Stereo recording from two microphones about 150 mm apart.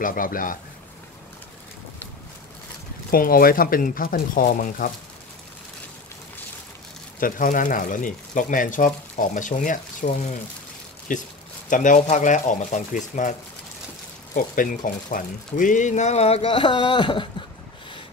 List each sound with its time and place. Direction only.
0.0 s speech: 65° left (ahead or behind)
3.1 s speech: 75° left (ahead or behind)
7.2 s speech: 65° left (ahead or behind)
14.3 s speech: 65° left (ahead or behind); by 17.3 s 35° left (ahead or behind)